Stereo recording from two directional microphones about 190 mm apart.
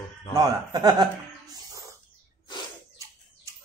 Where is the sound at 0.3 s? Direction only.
20° right (ahead or behind).